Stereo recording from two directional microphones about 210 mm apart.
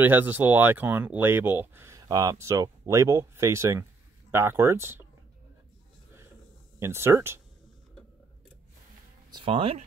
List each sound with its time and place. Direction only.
0.0 s speech: 10° right (ahead or behind)
6.8 s speech: 10° right (ahead or behind)
9.3 s speech: 25° right (ahead or behind)